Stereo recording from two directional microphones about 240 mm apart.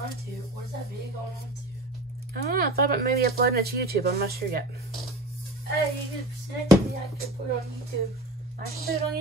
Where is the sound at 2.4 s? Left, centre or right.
Right.